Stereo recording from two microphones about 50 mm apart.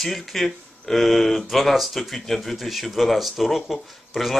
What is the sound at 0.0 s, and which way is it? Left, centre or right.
Speech, centre.